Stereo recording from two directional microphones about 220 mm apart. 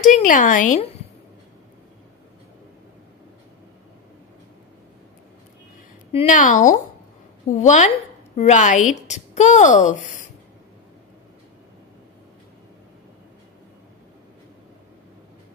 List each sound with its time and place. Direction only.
0.0 s a woman's voice: 35° left (ahead or behind)
6.1 s a woman's voice: 35° left (ahead or behind)